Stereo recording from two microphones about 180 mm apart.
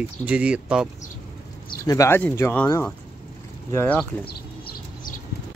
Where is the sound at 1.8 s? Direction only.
15° left (ahead or behind).